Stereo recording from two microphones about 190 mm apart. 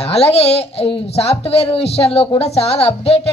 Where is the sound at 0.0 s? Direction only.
30° left (ahead or behind).